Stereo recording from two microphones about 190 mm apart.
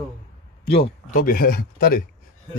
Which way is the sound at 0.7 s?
55° left (ahead or behind).